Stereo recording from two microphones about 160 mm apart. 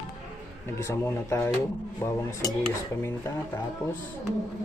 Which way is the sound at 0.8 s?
15° left (ahead or behind).